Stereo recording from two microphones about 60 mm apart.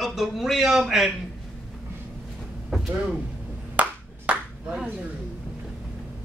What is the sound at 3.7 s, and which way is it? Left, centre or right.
Ping, right.